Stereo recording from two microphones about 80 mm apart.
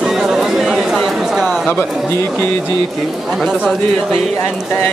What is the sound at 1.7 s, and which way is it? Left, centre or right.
Speech, left.